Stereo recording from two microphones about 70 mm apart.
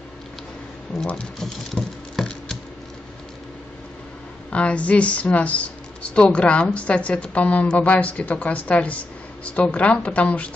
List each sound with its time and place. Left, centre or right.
0.9 s speech: centre
1.4 s patter: centre
4.5 s speech: centre